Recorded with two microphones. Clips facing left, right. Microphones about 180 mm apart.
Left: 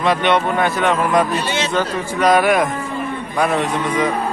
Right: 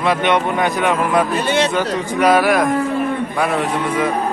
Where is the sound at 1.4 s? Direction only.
55° right (ahead or behind).